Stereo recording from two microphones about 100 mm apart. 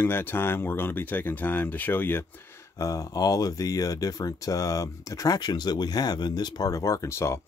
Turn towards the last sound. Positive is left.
turn(degrees=30)  # may be behind; listen again after turning